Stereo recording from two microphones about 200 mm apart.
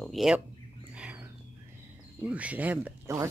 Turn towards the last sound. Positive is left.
turn(degrees=-15)  # may be behind; listen again after turning